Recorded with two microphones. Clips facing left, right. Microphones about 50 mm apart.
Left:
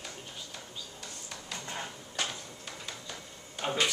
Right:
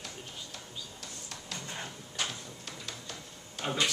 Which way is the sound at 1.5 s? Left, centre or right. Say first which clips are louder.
Left 2 dB; centre.